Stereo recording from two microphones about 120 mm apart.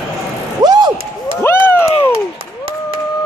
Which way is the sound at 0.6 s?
35° right (ahead or behind).